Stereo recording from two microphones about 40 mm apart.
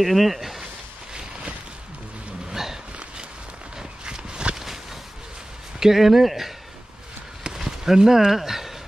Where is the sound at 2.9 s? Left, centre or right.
Right.